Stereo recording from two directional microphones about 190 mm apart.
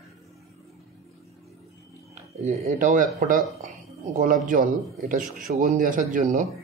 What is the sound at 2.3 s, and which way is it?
Speech, 40° right (ahead or behind).